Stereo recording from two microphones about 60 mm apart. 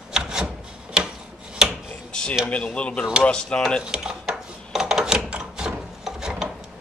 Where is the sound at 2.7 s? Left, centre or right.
Centre.